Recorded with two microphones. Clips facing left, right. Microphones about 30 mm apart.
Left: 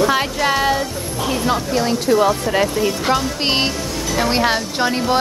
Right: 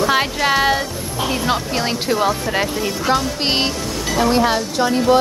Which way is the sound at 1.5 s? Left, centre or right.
Right.